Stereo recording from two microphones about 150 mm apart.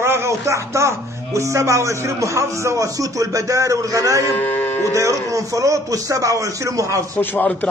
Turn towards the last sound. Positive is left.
turn(degrees=10)  # may be behind; listen again after turning